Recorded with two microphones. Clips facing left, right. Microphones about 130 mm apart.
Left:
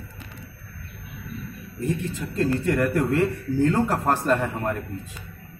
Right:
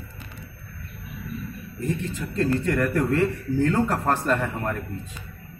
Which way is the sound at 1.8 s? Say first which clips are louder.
Left 1 dB; 15° left (ahead or behind).